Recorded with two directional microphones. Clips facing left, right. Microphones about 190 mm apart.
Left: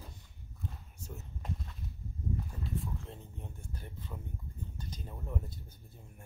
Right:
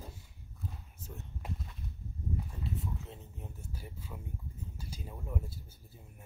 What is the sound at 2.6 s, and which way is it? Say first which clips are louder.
Speech: even; centre (ahead or behind).